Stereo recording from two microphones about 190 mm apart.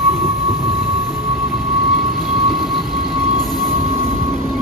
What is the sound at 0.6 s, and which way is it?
Vehicle, 30° right (ahead or behind).